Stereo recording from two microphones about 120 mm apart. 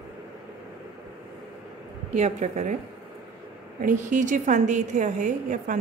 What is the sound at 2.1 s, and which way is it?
Speech, 70° right (ahead or behind).